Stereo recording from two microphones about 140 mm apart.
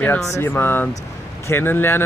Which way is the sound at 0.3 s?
15° left (ahead or behind).